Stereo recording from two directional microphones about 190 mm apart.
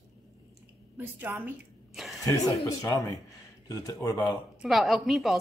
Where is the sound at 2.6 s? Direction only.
15° left (ahead or behind).